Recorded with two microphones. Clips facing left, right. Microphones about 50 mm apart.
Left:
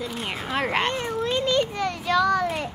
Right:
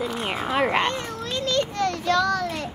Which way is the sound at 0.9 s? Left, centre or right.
Centre.